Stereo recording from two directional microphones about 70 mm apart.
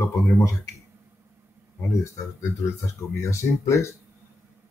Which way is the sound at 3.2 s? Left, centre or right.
Left.